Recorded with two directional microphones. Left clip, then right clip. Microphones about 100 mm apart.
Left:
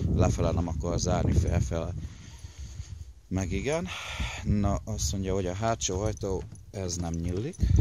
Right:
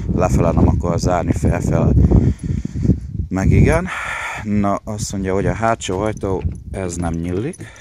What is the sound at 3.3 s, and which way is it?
Speech, 45° left (ahead or behind).